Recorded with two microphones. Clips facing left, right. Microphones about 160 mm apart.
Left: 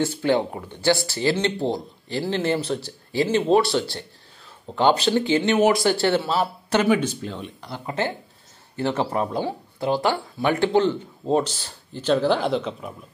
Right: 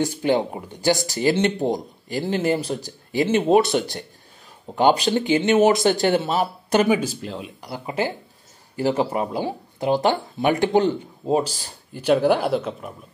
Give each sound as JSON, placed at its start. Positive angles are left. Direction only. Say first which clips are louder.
{"t": 0.0, "sound": "speech", "louder": "right 1 dB", "side_deg": -15}